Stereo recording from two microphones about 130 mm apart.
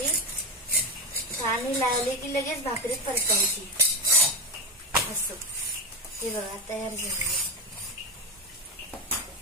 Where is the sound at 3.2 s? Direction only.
25° right (ahead or behind).